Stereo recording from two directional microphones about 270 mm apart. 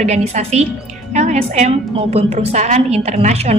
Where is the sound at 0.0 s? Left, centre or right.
Right.